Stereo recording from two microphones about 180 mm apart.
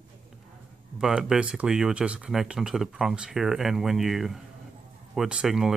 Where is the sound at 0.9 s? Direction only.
5° right (ahead or behind).